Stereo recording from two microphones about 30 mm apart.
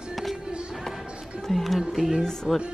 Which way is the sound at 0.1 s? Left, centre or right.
Centre.